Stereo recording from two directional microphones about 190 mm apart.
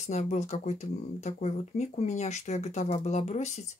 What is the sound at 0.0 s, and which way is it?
Speech, 40° left (ahead or behind).